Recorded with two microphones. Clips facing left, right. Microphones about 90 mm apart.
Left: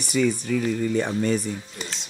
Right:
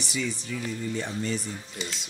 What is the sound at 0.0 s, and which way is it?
Speech, 50° left (ahead or behind).